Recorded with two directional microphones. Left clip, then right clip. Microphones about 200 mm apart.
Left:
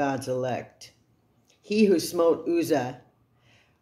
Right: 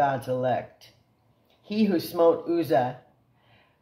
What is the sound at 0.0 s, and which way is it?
Speech, 45° left (ahead or behind).